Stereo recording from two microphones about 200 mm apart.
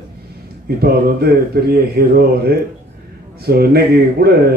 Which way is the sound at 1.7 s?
50° right (ahead or behind).